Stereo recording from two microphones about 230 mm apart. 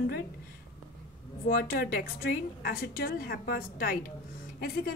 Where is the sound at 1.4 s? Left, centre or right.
Left.